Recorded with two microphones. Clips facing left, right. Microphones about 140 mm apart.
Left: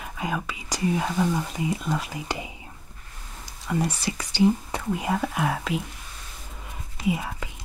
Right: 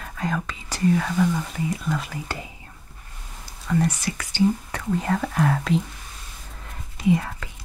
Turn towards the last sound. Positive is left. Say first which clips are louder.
# right 5 dB
turn(degrees=10)  # may be behind; listen again after turning